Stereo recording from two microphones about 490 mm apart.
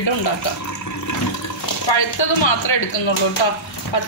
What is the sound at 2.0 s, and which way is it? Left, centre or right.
Speech, left.